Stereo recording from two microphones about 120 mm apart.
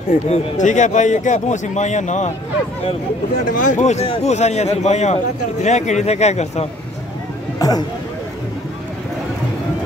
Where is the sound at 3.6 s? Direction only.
85° left; by 6.6 s 65° left (ahead or behind).